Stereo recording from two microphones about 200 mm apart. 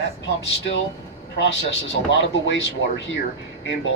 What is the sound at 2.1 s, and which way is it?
Speech, 65° left (ahead or behind).